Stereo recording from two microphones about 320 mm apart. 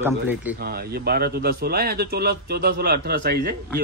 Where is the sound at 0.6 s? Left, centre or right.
Right.